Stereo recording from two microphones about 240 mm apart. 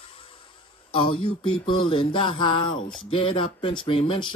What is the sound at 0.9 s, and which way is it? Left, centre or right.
Music, left.